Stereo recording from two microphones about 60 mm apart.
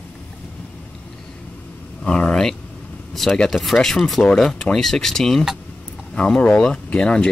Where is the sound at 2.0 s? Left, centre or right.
Centre.